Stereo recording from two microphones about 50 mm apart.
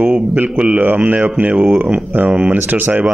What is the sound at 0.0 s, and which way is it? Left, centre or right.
Speech, right.